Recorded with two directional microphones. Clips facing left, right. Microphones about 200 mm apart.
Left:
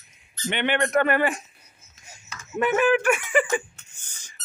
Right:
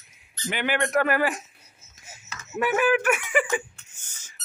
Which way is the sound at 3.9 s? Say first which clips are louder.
Left 1 dB; 10° right (ahead or behind).